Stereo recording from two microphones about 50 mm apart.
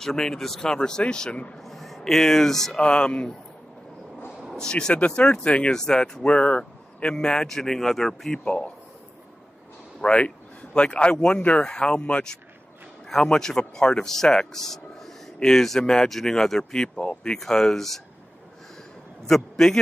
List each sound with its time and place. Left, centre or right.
0.0 s speech: centre
1.6 s speech: centre
2.8 s speech: centre
4.6 s speech: centre
9.9 s speech: left
19.2 s a man's voice: centre